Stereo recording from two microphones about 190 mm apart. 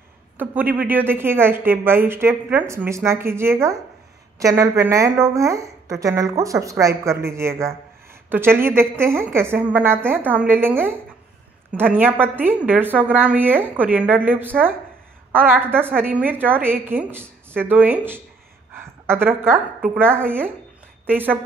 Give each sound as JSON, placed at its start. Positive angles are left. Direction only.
{"t": 0.4, "sound": "a woman's voice", "side_deg": -10}